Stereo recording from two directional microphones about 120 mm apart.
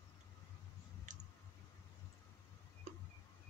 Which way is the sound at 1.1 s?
90° right.